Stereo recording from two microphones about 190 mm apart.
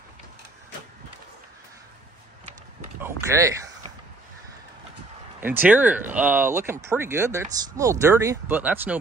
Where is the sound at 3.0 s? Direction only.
15° right (ahead or behind).